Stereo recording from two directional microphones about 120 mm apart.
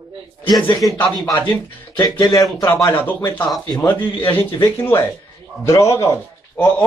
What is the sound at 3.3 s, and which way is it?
Speech, 5° left (ahead or behind).